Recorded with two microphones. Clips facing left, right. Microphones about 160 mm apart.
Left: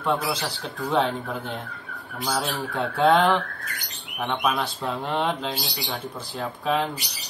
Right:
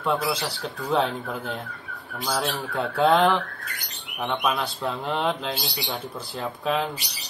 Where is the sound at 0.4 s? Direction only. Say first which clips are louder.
Even; centre (ahead or behind).